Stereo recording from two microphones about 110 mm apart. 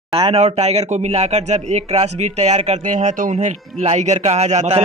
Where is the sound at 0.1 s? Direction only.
65° right (ahead or behind).